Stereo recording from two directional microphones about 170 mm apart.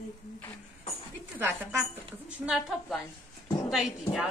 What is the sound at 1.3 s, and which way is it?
A woman's voice, 10° right (ahead or behind).